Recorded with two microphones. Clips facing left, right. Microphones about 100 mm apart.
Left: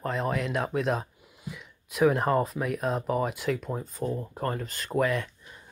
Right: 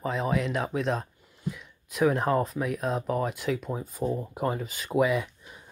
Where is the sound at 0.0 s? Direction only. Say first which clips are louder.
Right 1 dB; centre (ahead or behind).